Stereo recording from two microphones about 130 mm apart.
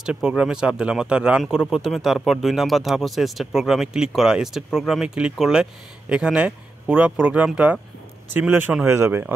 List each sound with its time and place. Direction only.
0.0 s speech: 5° right (ahead or behind)